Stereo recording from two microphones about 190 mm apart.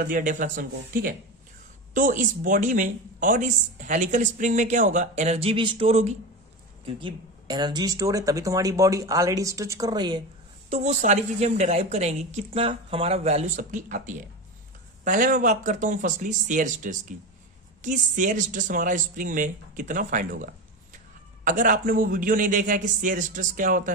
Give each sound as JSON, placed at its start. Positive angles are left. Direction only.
{"t": 0.0, "sound": "speech", "side_deg": -45}
{"t": 10.7, "sound": "speech", "side_deg": -35}
{"t": 21.5, "sound": "speech", "side_deg": -45}